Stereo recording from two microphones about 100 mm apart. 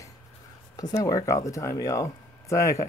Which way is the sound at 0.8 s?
35° left (ahead or behind).